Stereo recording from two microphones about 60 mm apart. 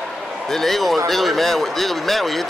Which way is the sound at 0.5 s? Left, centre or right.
Centre.